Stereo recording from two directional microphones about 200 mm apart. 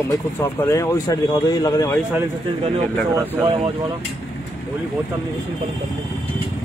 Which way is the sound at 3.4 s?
25° right (ahead or behind).